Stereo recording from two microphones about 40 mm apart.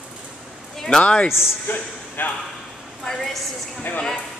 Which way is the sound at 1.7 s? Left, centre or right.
Left.